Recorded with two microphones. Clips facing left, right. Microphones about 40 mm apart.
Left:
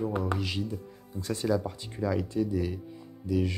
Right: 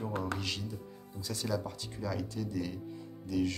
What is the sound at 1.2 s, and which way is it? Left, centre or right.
Speech, left.